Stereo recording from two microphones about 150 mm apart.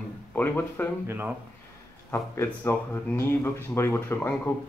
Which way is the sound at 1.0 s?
15° right (ahead or behind).